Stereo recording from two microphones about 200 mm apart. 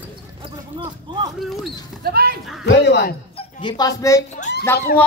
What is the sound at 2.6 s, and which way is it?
Speech, 60° left (ahead or behind).